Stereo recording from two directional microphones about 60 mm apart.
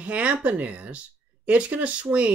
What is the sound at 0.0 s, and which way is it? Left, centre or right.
Speech, right.